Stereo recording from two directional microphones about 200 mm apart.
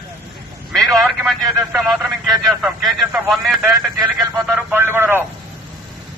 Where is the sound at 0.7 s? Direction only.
Centre (ahead or behind).